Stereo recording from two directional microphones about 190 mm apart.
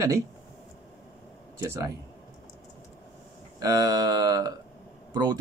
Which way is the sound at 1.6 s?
15° right (ahead or behind).